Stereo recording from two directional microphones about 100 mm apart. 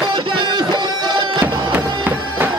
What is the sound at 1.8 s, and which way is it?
Music, 20° right (ahead or behind).